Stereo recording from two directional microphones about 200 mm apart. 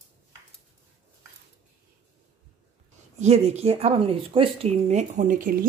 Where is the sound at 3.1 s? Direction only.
30° right (ahead or behind).